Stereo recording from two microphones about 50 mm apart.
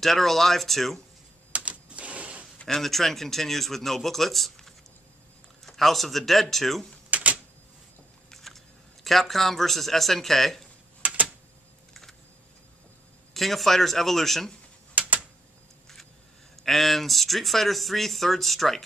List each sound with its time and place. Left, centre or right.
0.0 s speech: centre
1.5 s typewriter: right
2.6 s speech: centre
7.1 s typewriter: right
8.3 s speech: centre
11.0 s a sound: right
11.9 s typing: centre
13.3 s speech: centre
16.6 s speech: centre